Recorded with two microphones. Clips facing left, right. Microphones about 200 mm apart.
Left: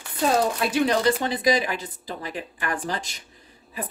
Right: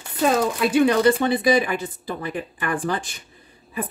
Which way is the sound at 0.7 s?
60° right (ahead or behind).